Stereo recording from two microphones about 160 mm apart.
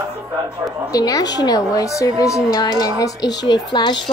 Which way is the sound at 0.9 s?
20° left (ahead or behind).